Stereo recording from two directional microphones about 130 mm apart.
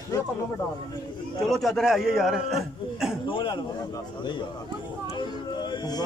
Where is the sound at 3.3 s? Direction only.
35° left (ahead or behind).